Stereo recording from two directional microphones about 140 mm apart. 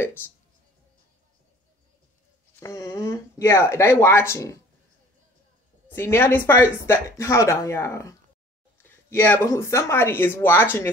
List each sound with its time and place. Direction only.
2.6 s speech: 20° left (ahead or behind)
5.9 s speech: 15° left (ahead or behind)